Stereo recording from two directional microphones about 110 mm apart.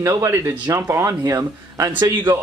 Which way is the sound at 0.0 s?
30° right (ahead or behind).